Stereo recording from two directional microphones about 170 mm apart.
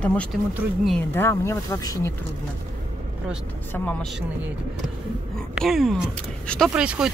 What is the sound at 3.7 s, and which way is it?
Speech, 10° left (ahead or behind).